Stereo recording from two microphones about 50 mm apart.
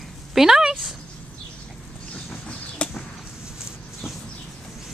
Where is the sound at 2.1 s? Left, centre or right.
Left.